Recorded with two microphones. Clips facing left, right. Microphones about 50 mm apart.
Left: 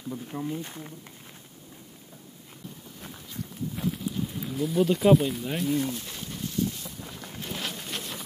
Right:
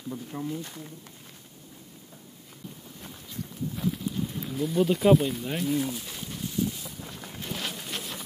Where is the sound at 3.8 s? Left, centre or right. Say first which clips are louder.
Even; centre.